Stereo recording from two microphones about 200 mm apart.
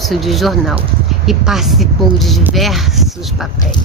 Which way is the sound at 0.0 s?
Centre (ahead or behind).